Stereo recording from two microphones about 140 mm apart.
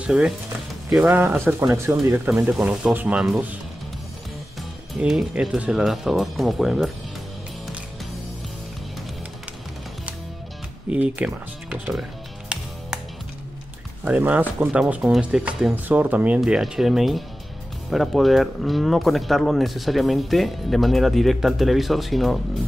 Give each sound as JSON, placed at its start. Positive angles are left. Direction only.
{"t": 0.0, "sound": "speech", "side_deg": -5}
{"t": 2.2, "sound": "speech", "side_deg": -5}
{"t": 4.6, "sound": "speech", "side_deg": -5}
{"t": 10.9, "sound": "music", "side_deg": -10}
{"t": 14.0, "sound": "speech", "side_deg": -10}